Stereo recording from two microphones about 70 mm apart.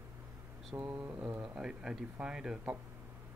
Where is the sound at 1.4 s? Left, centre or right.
Centre.